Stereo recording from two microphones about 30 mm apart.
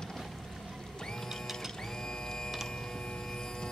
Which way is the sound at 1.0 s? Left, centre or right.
Centre.